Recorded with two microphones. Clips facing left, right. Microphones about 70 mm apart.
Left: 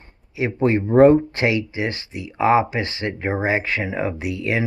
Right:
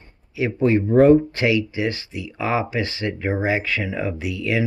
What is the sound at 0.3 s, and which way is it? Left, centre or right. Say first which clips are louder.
Speech: right 1 dB; left.